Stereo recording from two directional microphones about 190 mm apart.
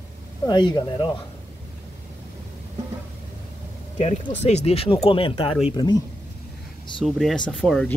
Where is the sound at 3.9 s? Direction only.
35° left (ahead or behind).